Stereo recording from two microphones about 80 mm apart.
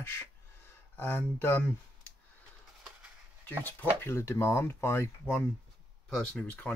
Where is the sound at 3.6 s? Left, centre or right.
Left.